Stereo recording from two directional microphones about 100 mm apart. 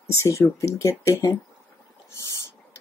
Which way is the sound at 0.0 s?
30° left (ahead or behind).